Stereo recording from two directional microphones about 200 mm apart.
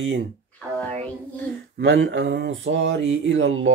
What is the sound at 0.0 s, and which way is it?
Speech, 65° right (ahead or behind).